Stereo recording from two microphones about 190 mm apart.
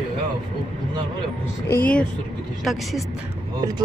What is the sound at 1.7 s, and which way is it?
Speech, 10° left (ahead or behind).